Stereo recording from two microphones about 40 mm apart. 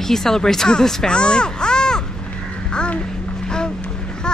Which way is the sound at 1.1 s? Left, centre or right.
Left.